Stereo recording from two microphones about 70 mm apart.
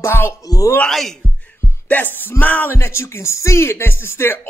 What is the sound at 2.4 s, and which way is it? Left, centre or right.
Speech, left.